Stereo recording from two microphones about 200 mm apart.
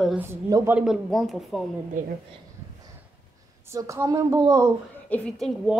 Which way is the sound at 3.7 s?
15° right (ahead or behind).